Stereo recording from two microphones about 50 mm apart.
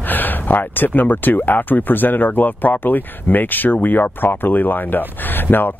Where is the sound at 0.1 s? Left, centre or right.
Left.